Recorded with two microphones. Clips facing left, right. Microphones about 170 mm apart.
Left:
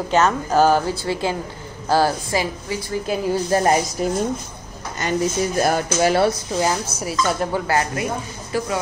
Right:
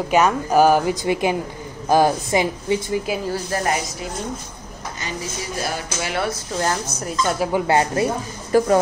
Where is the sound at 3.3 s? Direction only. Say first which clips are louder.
Left 5 dB; 30° left (ahead or behind).